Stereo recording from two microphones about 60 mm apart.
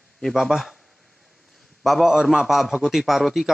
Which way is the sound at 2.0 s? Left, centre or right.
Centre.